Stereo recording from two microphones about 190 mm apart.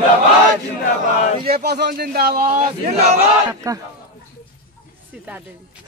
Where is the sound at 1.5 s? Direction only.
60° right (ahead or behind).